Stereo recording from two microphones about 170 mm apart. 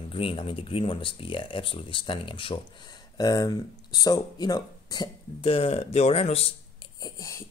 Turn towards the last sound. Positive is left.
turn(degrees=20)  # may be behind; listen again after turning